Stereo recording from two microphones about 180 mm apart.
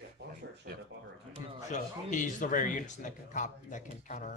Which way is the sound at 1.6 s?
45° left (ahead or behind).